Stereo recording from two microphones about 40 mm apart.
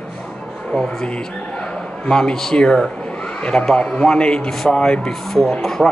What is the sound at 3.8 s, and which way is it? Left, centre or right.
Speech, left.